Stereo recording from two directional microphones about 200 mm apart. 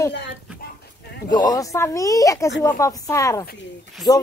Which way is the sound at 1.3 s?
20° left (ahead or behind).